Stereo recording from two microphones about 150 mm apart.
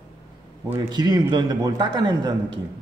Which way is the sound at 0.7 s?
25° right (ahead or behind).